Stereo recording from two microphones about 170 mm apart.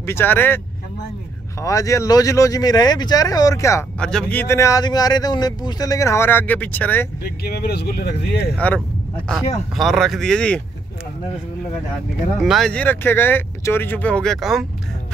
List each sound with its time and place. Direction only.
0.0 s speech: 15° left (ahead or behind)
1.6 s speech: 20° left (ahead or behind)
4.0 s speech: 5° left (ahead or behind)
7.2 s speech: 70° left (ahead or behind)
8.5 s speech: 10° left (ahead or behind)
12.4 s speech: centre (ahead or behind)